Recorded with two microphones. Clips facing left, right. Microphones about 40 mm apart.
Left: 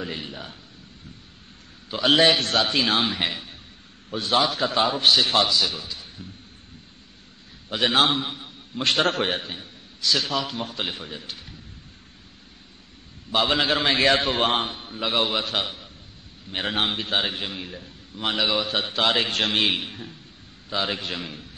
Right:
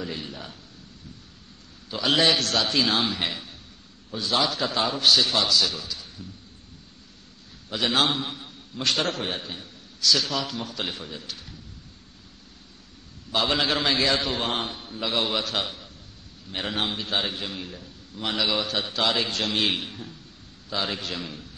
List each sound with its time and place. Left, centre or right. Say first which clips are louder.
0.0 s a man's voice: left 1 dB; left
1.9 s a man's voice: left 3 dB; left
4.4 s a man's voice: left 3 dB; left
7.7 s a man's voice: left 3 dB; left
8.2 s a man's voice: left 2 dB; centre
8.7 s a man's voice: left 4 dB; left
9.5 s a man's voice: left 1 dB; left
13.3 s a man's voice: left 2 dB; left
14.0 s a man's voice: left 5 dB; left
14.6 s a man's voice: left 2 dB; left
15.4 s a man's voice: left 2 dB; centre
16.4 s a man's voice: left 3 dB; left
19.6 s a man's voice: left 2 dB; centre